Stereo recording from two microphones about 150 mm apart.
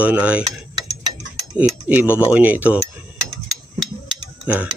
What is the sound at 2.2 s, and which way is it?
Speech, 10° right (ahead or behind).